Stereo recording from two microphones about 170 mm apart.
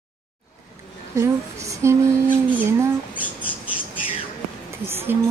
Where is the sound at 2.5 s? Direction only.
15° right (ahead or behind).